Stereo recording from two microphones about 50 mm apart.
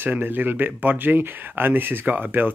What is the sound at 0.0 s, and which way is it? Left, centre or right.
Speech, right.